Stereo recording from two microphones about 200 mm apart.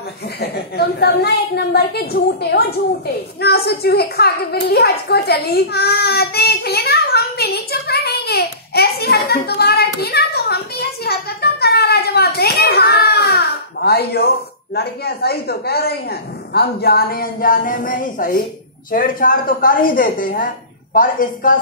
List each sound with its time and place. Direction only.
0.4 s a woman's voice: 55° left (ahead or behind)